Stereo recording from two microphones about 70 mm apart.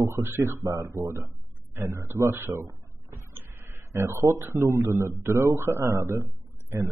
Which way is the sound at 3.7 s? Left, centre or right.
Right.